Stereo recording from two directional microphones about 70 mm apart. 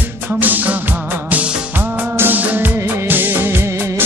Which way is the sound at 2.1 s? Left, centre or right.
Right.